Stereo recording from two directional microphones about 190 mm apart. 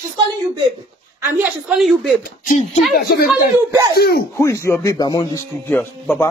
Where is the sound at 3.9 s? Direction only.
55° left (ahead or behind).